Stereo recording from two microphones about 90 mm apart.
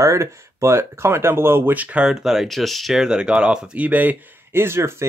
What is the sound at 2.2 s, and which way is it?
Speech, 5° right (ahead or behind).